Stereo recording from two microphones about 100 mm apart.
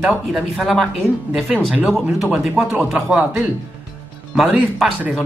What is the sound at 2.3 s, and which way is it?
Speech, 10° right (ahead or behind).